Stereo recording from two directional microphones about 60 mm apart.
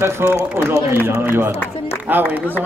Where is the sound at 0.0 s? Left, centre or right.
Right.